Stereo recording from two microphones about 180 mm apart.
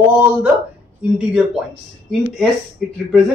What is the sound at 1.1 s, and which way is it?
Speech, 5° right (ahead or behind).